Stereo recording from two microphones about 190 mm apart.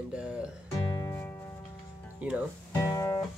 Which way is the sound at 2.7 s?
15° left (ahead or behind).